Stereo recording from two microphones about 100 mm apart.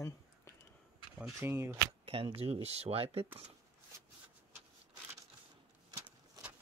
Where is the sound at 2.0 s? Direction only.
65° right (ahead or behind).